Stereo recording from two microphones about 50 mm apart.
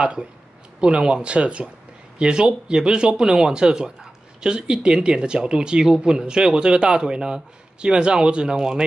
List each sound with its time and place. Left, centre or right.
0.0 s speech: right